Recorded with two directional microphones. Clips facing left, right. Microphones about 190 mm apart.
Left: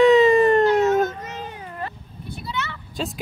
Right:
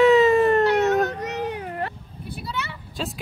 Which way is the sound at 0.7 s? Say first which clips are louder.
Left 2 dB; 70° right (ahead or behind).